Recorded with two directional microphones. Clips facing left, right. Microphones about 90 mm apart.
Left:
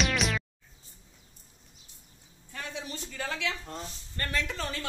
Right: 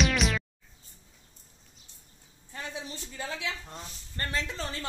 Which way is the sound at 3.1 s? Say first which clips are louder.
Left 2 dB; 20° right (ahead or behind).